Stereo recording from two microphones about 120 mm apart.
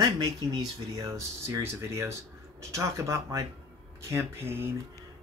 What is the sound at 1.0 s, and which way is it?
Speech, 25° right (ahead or behind).